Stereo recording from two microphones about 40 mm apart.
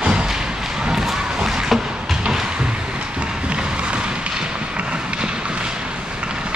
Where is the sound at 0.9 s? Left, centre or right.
Centre.